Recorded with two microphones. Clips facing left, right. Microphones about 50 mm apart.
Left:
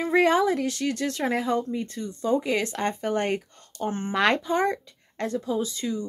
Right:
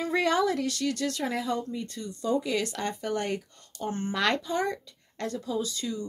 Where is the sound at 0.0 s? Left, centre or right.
Left.